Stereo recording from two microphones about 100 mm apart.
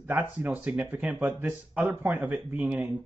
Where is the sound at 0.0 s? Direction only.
20° right (ahead or behind).